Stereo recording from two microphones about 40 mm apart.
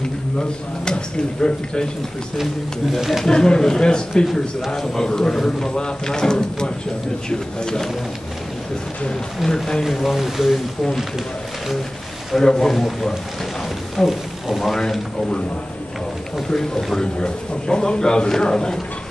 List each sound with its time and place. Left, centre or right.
0.4 s speech: left
3.0 s speech: centre
3.3 s speech: centre
9.4 s speech: centre
9.8 s speech: centre
12.4 s speech: centre
16.4 s speech: centre